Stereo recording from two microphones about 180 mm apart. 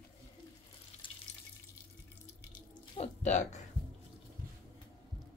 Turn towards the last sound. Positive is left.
turn(degrees=40)  # may be behind; listen again after turning